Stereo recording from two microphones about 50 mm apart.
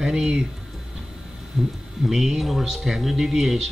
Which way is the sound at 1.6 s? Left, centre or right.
Centre.